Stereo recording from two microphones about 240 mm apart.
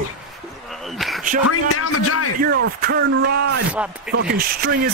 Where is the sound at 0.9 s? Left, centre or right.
Centre.